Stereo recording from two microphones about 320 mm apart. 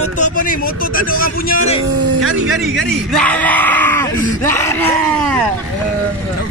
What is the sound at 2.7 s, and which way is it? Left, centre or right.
Speech, centre.